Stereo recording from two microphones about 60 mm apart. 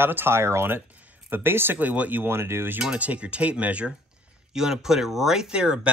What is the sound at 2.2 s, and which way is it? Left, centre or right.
Speech, right.